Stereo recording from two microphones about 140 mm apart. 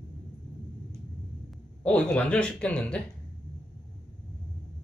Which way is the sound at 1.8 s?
5° left (ahead or behind).